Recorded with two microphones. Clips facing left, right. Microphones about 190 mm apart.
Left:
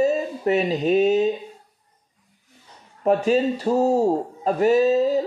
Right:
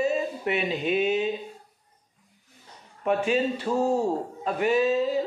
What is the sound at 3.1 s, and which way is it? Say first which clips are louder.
Speech: left 5 dB; 40° left (ahead or behind).